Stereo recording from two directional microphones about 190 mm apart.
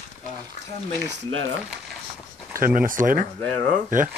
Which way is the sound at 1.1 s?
90° right.